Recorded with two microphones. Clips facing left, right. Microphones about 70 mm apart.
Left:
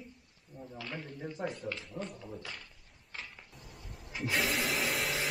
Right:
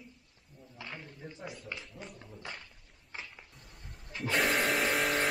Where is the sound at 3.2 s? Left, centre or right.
Centre.